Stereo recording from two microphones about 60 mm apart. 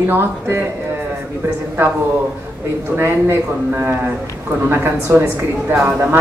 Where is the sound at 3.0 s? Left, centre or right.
Right.